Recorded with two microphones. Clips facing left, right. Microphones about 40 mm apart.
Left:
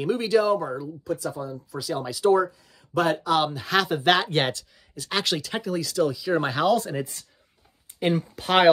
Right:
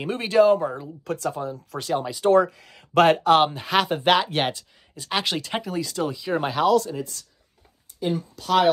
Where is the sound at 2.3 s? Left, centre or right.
Right.